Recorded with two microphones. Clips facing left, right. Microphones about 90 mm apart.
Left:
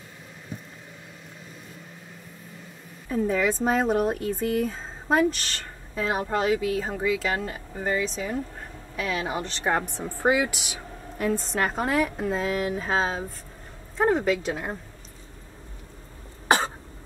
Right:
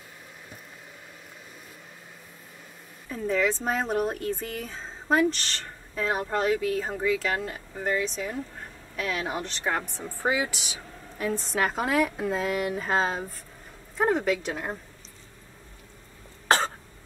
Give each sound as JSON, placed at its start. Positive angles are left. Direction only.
{"t": 3.1, "sound": "a woman's voice", "side_deg": 10}
{"t": 9.9, "sound": "speech", "side_deg": 15}
{"t": 10.3, "sound": "a woman's voice", "side_deg": 0}
{"t": 16.4, "sound": "cough", "side_deg": 15}